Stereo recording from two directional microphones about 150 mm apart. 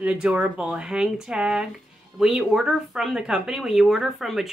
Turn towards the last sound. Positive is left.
turn(degrees=0)  # may be behind; listen again after turning